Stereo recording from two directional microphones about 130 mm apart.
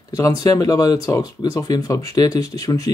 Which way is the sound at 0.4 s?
25° left (ahead or behind).